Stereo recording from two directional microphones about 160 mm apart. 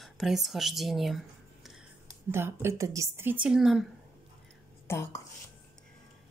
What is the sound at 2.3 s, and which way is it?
A woman's voice, 15° right (ahead or behind).